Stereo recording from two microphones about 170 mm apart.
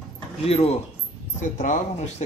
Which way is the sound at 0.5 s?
35° left (ahead or behind).